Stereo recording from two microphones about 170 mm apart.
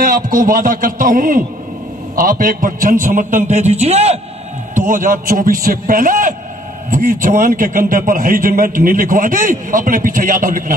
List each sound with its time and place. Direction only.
0.0 s a man's voice: 55° right (ahead or behind)
4.7 s a man's voice: 50° right (ahead or behind)